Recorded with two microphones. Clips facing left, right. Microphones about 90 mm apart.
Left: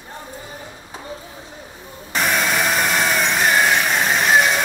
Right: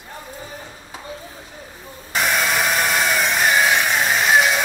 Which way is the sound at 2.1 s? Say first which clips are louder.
Even; centre (ahead or behind).